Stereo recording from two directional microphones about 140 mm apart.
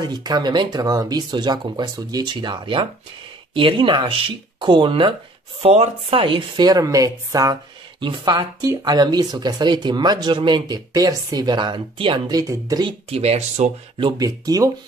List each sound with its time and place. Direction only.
0.0 s speech: 30° right (ahead or behind)
13.1 s speech: 45° right (ahead or behind); by 14.7 s 25° right (ahead or behind)